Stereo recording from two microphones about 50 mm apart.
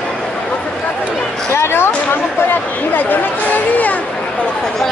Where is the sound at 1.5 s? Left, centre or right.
Left.